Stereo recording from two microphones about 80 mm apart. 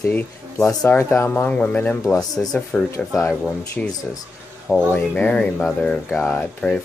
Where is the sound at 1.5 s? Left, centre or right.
Centre.